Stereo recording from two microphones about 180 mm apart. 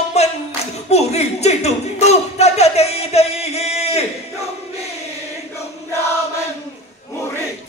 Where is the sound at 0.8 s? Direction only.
35° left (ahead or behind).